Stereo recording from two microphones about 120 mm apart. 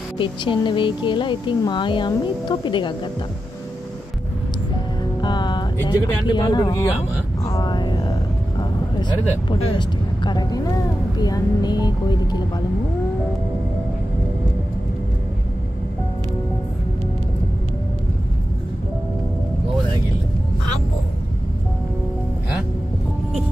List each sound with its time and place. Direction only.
0.2 s a woman's voice: 45° left (ahead or behind)
5.2 s music: 40° left (ahead or behind)
5.9 s a woman's voice: 40° left (ahead or behind)
7.4 s a sound: 35° left (ahead or behind)
8.5 s speech: 40° left (ahead or behind)